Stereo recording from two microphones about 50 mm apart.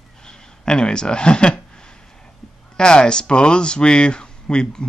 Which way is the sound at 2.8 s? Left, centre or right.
Centre.